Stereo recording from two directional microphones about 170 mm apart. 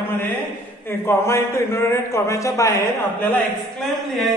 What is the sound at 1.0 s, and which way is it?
A man's voice, 15° left (ahead or behind).